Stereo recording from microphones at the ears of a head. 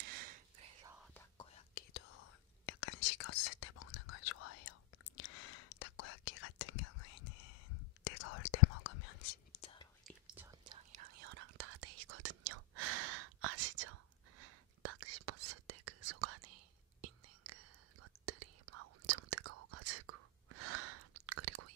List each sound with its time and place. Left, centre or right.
0.0 s whispering: right
1.4 s whispering: left
10.2 s whispering: right